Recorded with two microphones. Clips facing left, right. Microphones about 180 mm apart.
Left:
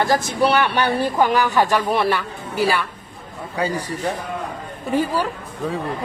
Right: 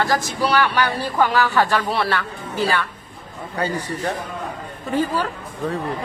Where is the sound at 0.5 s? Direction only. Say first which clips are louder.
Right 1 dB; 25° left (ahead or behind).